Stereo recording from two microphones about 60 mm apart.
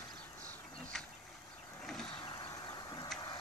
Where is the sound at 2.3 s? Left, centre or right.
Left.